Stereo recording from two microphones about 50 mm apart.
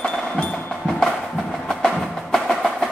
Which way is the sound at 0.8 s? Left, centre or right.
Centre.